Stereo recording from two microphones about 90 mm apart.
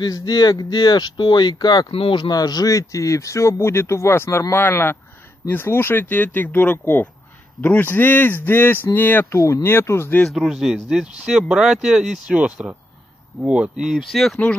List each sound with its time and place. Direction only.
0.0 s speech: 45° left (ahead or behind)
1.9 s speech: 85° left
2.2 s speech: 45° left (ahead or behind); by 10.2 s 25° left (ahead or behind)
10.2 s speech: 5° left (ahead or behind)